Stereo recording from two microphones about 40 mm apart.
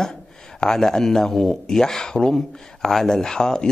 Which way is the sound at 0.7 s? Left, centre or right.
Centre.